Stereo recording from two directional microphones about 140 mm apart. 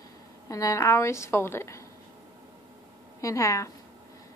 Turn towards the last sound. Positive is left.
turn(degrees=20)  # may be behind; listen again after turning